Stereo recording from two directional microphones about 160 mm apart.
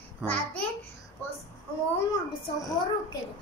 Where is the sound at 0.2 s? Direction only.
10° left (ahead or behind).